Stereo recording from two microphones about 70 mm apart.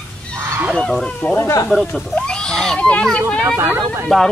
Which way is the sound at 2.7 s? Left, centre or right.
Centre.